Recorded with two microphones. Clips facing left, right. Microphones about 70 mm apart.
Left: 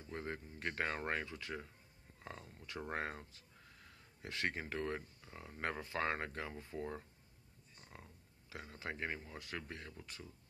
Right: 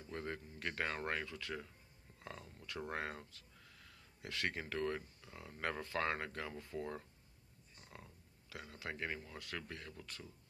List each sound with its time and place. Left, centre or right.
0.1 s speech: left